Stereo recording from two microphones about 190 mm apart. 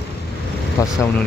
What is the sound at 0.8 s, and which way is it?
Speech, 15° left (ahead or behind).